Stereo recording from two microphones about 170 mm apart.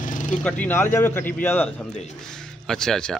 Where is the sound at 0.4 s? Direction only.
10° left (ahead or behind).